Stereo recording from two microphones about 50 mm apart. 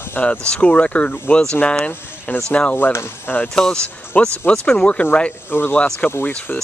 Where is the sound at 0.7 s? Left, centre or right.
Left.